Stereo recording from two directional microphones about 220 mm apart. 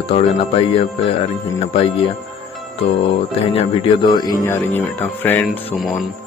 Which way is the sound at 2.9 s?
25° left (ahead or behind).